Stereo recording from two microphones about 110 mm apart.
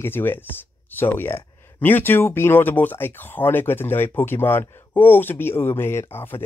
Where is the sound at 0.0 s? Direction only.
20° left (ahead or behind).